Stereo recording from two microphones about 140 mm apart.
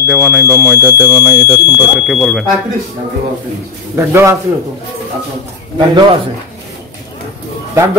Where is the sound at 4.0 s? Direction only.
15° right (ahead or behind).